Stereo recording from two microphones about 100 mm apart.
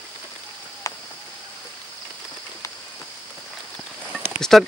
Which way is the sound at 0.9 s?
35° left (ahead or behind).